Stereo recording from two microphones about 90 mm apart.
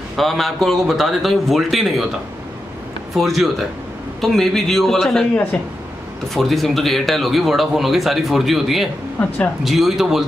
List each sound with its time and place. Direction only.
0.2 s speech: centre (ahead or behind)
3.2 s speech: centre (ahead or behind)